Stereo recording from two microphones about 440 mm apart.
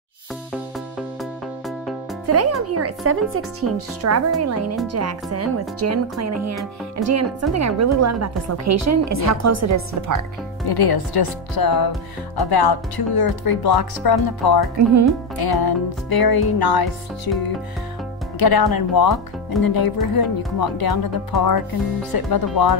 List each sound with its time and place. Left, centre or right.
2.2 s a woman's voice: right
10.7 s speech: left